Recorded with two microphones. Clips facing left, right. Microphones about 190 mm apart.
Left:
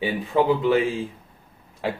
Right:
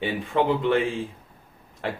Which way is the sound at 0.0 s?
5° left (ahead or behind).